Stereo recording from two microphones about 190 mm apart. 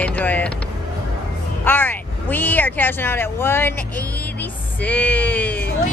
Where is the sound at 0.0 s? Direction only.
10° left (ahead or behind).